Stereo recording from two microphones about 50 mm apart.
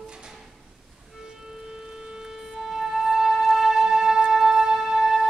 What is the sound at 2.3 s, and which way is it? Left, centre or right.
Music, centre.